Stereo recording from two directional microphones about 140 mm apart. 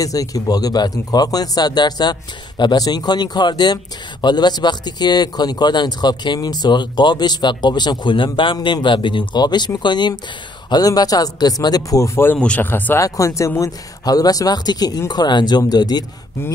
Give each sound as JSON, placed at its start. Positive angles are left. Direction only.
{"t": 0.0, "sound": "speech", "side_deg": 25}